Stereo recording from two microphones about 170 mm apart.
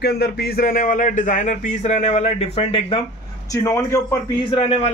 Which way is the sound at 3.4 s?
20° left (ahead or behind).